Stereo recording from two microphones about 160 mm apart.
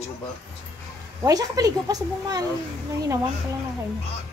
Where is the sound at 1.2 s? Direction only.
20° right (ahead or behind).